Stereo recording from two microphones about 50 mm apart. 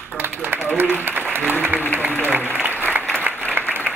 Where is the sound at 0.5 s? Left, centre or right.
Right.